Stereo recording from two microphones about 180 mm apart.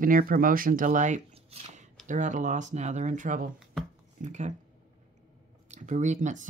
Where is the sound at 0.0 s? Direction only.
50° right (ahead or behind).